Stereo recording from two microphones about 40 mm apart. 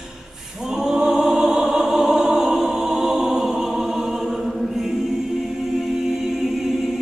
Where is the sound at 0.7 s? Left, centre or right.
Centre.